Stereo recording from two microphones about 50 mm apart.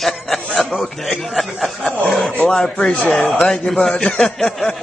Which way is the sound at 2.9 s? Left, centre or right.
Left.